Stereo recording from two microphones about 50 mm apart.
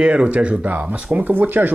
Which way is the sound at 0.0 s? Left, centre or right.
Right.